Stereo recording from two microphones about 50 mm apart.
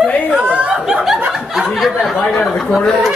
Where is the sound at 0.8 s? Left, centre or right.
Centre.